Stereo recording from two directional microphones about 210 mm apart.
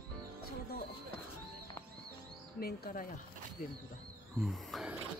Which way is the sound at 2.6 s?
45° left (ahead or behind).